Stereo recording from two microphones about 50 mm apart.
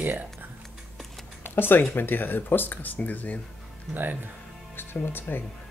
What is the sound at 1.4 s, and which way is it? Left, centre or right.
Speech, left.